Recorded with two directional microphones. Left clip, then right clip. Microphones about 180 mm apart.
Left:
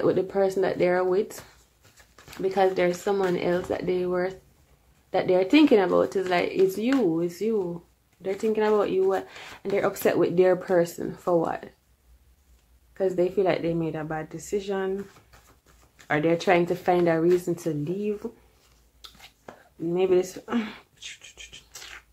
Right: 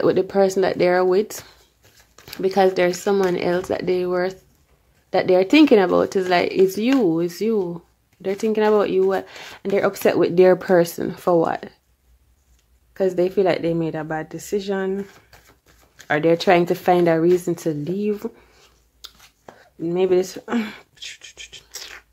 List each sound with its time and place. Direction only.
0.0 s speech: 40° right (ahead or behind)
2.3 s speech: 45° right (ahead or behind)
12.9 s speech: 40° right (ahead or behind)
16.1 s speech: 40° right (ahead or behind)
19.0 s whispering: 40° right (ahead or behind)
19.8 s speech: 40° right (ahead or behind)